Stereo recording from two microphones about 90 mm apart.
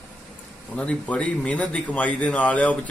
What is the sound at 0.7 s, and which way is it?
Speech, 15° left (ahead or behind).